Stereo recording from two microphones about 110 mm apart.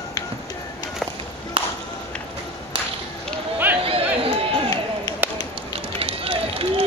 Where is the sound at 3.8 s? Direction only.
60° right (ahead or behind).